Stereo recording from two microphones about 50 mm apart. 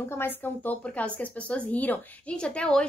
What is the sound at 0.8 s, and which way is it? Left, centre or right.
Speech, left.